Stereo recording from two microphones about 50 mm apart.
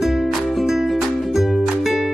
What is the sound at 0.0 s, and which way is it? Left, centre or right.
Music, centre.